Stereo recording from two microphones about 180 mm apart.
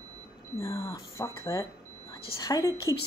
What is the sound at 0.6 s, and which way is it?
A woman's voice, 15° left (ahead or behind).